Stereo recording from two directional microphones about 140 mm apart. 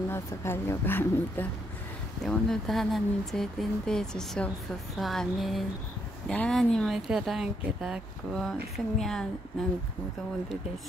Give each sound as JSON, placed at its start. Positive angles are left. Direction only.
{"t": 0.1, "sound": "speech", "side_deg": 20}
{"t": 2.2, "sound": "speech", "side_deg": 5}